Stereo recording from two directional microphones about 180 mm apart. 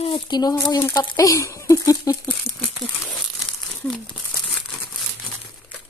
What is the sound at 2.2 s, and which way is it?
Crumpling, 5° left (ahead or behind).